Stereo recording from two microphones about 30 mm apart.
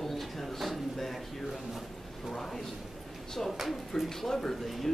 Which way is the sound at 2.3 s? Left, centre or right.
Centre.